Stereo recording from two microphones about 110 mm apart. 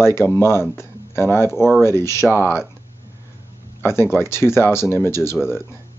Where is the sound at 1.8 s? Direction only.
25° left (ahead or behind).